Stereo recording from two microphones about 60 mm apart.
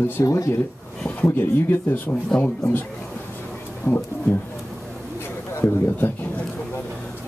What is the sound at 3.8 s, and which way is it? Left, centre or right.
Speech, left.